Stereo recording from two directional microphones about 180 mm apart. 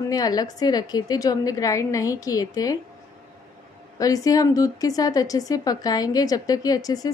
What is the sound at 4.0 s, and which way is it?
Speech, 20° left (ahead or behind).